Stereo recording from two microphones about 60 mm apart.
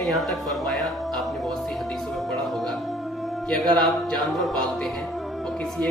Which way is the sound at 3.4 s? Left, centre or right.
Centre.